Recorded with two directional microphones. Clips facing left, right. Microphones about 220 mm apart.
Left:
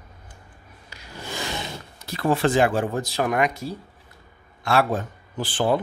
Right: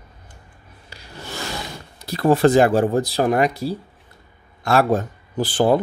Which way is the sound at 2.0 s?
35° right (ahead or behind).